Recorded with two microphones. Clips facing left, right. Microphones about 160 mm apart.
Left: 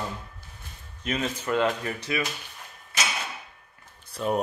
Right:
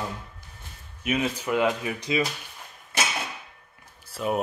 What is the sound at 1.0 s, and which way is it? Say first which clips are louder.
Speech: right 3 dB; 10° right (ahead or behind).